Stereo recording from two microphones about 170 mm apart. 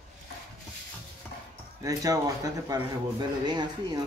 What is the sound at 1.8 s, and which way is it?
Speech, 20° right (ahead or behind).